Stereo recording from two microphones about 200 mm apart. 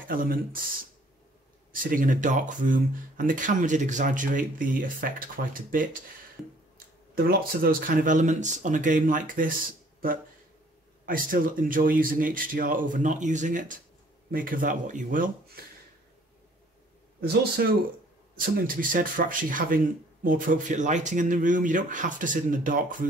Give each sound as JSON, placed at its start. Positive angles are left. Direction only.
{"t": 0.1, "sound": "speech", "side_deg": -45}
{"t": 1.7, "sound": "speech", "side_deg": -45}
{"t": 7.2, "sound": "speech", "side_deg": -45}
{"t": 17.2, "sound": "speech", "side_deg": -55}